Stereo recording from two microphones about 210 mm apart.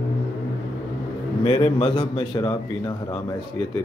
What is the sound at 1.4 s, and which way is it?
A man's voice, 25° left (ahead or behind).